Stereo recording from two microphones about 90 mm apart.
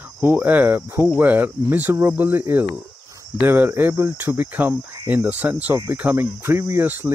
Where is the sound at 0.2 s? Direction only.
20° right (ahead or behind).